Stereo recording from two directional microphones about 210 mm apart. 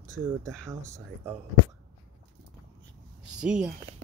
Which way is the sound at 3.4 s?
5° right (ahead or behind).